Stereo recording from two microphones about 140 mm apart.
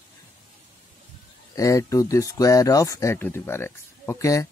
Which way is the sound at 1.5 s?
25° left (ahead or behind).